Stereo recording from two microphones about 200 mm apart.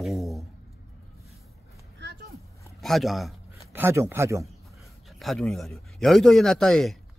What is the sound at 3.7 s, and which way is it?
Speech, 10° right (ahead or behind).